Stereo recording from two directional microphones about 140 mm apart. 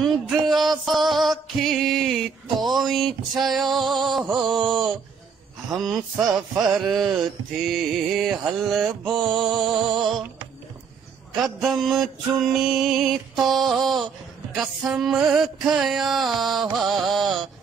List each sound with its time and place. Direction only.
0.0 s music: centre (ahead or behind)
9.3 s music: 35° right (ahead or behind)
9.6 s music: centre (ahead or behind)
11.3 s music: centre (ahead or behind)